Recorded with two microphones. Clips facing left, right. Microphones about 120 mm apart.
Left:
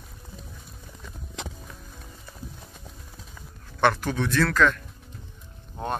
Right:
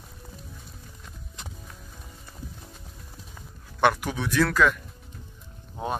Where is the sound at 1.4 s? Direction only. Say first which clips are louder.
Left 8 dB; 90° left.